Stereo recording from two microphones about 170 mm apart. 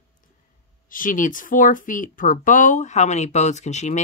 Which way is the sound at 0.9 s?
50° left (ahead or behind).